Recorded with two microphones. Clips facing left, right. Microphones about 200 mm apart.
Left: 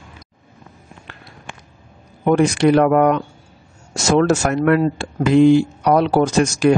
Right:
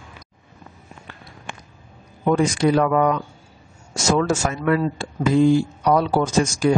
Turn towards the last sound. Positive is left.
turn(degrees=70)  # may be behind; listen again after turning